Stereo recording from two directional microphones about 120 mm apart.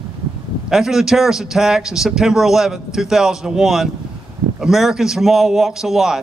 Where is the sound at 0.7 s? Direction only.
5° right (ahead or behind).